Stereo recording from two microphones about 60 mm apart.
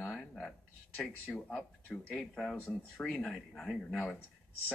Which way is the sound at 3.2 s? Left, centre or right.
Centre.